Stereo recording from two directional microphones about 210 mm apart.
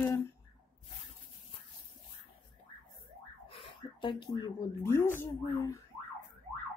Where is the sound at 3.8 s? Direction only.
20° left (ahead or behind).